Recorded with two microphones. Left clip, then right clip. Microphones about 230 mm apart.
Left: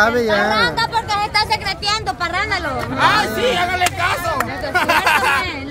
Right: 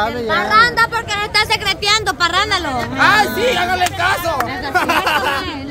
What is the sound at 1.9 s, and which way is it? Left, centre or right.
Speech, right.